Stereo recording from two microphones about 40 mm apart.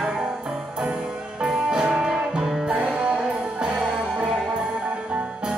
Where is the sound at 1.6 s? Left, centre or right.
Right.